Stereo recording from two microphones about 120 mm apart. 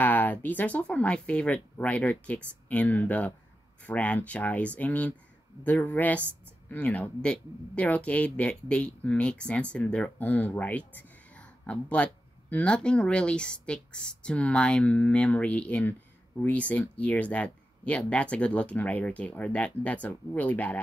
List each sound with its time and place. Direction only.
0.0 s speech: 15° left (ahead or behind)